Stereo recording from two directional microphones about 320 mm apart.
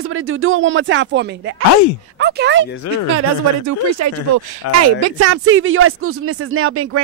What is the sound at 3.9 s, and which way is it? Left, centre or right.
Speech, right.